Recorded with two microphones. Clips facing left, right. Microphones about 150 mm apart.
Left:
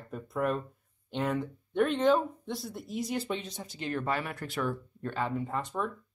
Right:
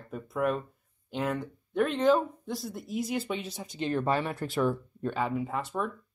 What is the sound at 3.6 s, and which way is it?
Speech, 20° right (ahead or behind).